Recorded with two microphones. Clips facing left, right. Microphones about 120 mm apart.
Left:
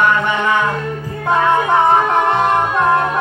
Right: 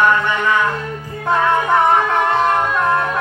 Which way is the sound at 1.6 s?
20° left (ahead or behind).